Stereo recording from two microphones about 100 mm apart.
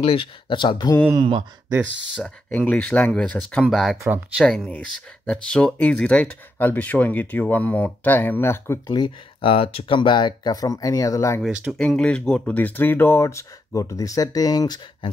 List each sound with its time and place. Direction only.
0.0 s speech: 60° left (ahead or behind)
2.2 s speech: 10° left (ahead or behind)
8.9 s speech: 55° left (ahead or behind); by 11.4 s 30° left (ahead or behind)
11.8 s speech: 10° left (ahead or behind); by 14.8 s 40° left (ahead or behind)